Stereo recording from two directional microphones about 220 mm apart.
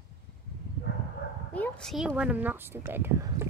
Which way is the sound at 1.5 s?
5° left (ahead or behind).